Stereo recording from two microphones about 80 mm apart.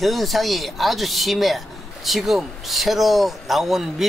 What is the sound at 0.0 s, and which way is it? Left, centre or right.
Speech, centre.